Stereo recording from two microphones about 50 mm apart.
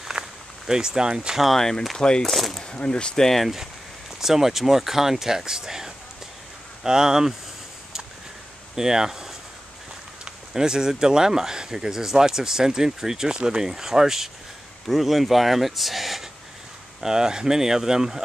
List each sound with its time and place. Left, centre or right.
0.2 s a sound: centre
0.7 s speech: centre
1.4 s speech: centre
2.3 s speech: centre
2.6 s speech: centre
3.3 s speech: centre
8.7 s speech: centre
17.0 s speech: centre